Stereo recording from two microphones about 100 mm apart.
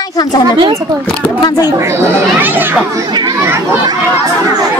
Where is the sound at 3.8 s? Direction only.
40° right (ahead or behind).